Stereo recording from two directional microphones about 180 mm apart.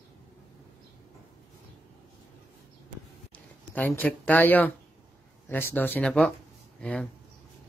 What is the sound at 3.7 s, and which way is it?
Speech, 10° left (ahead or behind).